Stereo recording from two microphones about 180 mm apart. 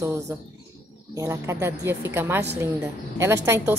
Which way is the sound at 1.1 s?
15° right (ahead or behind).